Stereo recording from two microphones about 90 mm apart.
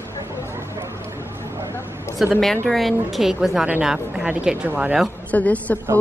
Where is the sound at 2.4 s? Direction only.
5° left (ahead or behind); by 4.9 s 15° right (ahead or behind).